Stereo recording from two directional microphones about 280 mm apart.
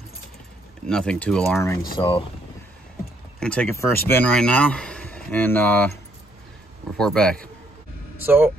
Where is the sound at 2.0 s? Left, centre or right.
Centre.